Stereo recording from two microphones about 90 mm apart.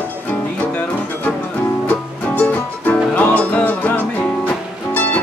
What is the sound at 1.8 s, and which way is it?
Music, 20° left (ahead or behind).